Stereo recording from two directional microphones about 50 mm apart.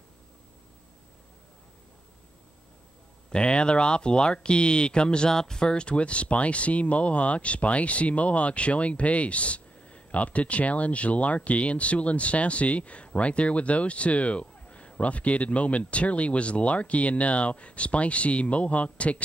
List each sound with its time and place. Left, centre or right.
3.3 s speech: centre